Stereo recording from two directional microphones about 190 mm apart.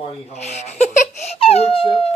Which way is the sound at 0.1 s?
35° left (ahead or behind).